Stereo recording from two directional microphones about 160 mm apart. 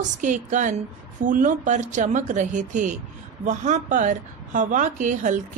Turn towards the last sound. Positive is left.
turn(degrees=-50)  # may be behind; listen again after turning